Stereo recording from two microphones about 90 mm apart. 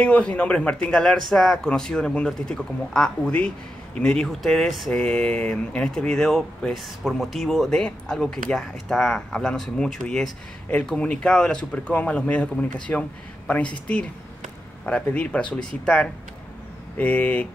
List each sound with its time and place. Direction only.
0.0 s speech: 15° left (ahead or behind)
16.9 s speech: 15° left (ahead or behind)